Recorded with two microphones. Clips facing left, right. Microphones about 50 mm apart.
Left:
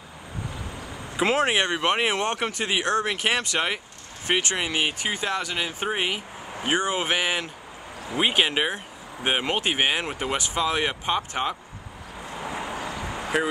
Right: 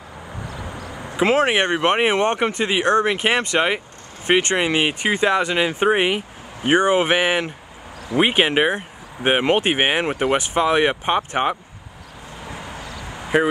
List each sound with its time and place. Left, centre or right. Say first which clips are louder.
1.2 s speech: right 5 dB; right
13.3 s speech: right 7 dB; right